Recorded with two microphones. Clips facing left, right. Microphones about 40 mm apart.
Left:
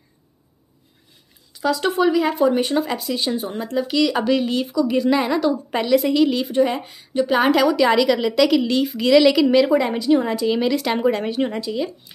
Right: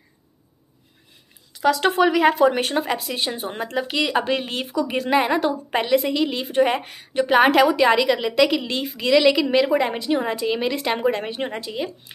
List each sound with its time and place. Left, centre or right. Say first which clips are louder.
1.5 s a woman's voice: right 2 dB; right
2.7 s speech: left 2 dB; right
5.7 s speech: even; right
6.0 s speech: left 5 dB; centre
6.5 s a woman's voice: even; right
7.6 s speech: left 1 dB; right
9.8 s speech: left 4 dB; right